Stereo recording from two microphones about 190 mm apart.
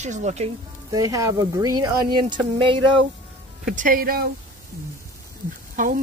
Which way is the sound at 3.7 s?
45° right (ahead or behind).